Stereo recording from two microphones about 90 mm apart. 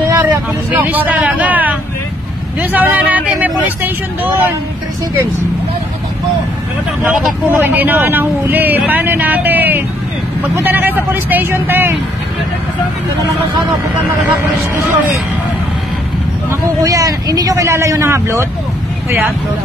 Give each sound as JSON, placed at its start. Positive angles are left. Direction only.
{"t": 0.0, "sound": "vehicle", "side_deg": -30}
{"t": 0.7, "sound": "speech", "side_deg": -20}
{"t": 7.4, "sound": "speech", "side_deg": -25}
{"t": 16.4, "sound": "speech", "side_deg": -40}